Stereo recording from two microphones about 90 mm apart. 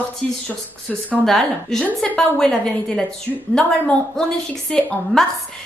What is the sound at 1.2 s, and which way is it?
A woman's voice, 5° left (ahead or behind).